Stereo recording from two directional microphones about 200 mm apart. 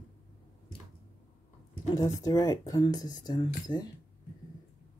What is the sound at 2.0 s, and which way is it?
Speech, 15° left (ahead or behind).